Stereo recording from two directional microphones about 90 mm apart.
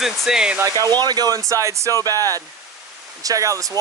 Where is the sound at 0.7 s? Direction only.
40° right (ahead or behind).